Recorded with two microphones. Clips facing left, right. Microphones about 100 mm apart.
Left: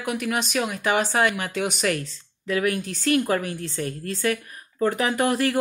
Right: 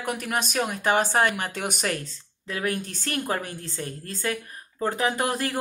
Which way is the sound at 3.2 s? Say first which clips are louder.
Left 4 dB; 25° right (ahead or behind).